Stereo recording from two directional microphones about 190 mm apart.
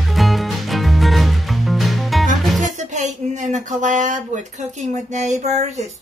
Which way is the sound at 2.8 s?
40° right (ahead or behind).